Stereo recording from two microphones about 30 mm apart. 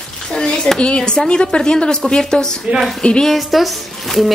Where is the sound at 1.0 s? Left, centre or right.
Centre.